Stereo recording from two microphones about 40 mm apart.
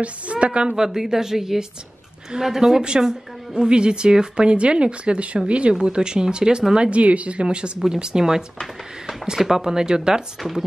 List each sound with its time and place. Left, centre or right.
0.0 s speech: right
0.7 s a woman's voice: centre